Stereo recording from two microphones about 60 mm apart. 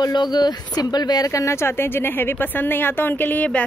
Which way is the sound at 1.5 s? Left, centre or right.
Left.